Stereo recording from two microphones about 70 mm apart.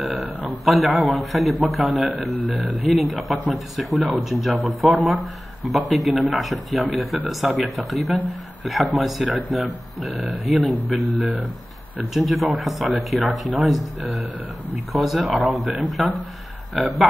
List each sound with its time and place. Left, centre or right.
0.7 s speech: centre